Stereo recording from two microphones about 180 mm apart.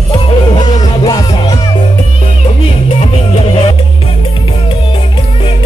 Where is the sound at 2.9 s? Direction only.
35° left (ahead or behind).